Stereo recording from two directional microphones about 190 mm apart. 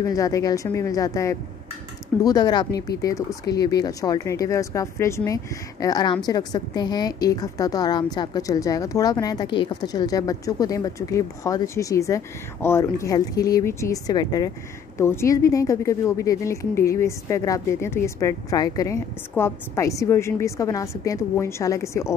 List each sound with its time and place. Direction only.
0.0 s a woman's voice: 20° left (ahead or behind)